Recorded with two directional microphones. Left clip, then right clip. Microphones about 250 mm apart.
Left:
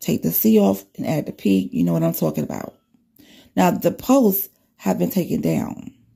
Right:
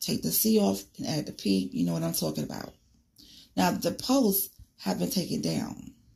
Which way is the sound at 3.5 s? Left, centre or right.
Left.